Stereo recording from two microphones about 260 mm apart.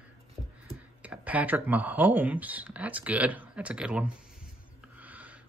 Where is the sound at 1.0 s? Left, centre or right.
Centre.